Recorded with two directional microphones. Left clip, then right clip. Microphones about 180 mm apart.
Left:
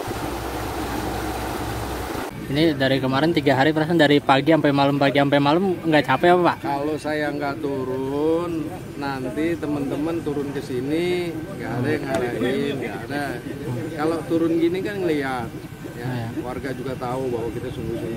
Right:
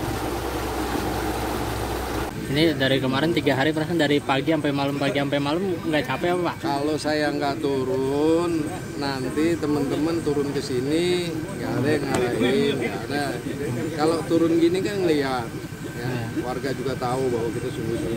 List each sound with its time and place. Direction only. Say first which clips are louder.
2.5 s speech: left 1 dB; 20° left (ahead or behind); by 6.5 s 40° left (ahead or behind)
6.7 s speech: even; 10° left (ahead or behind)
10.9 s speech: even; 10° left (ahead or behind)
13.9 s speech: right 1 dB; 5° left (ahead or behind)
16.6 s speech: right 2 dB; centre (ahead or behind)